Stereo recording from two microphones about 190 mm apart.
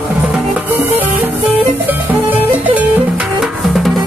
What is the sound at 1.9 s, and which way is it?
Music, 10° right (ahead or behind).